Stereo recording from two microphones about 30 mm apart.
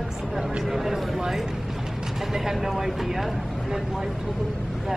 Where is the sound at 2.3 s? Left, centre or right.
Centre.